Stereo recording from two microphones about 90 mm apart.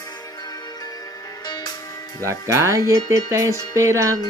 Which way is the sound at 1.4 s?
50° left (ahead or behind).